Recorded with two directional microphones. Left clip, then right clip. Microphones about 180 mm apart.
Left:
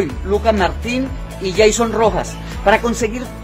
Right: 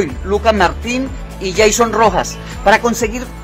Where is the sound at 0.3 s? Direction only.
15° right (ahead or behind).